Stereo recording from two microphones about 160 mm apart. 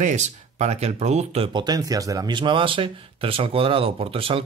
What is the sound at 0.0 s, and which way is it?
Speech, 45° right (ahead or behind).